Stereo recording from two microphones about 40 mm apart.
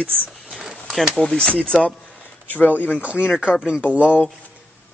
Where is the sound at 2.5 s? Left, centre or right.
Left.